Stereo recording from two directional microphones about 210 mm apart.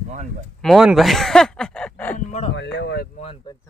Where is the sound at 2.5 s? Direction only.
55° left (ahead or behind).